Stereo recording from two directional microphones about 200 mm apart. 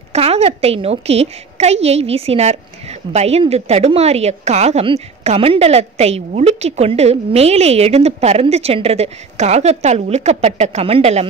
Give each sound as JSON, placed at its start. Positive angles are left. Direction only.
{"t": 0.1, "sound": "a woman's voice", "side_deg": -30}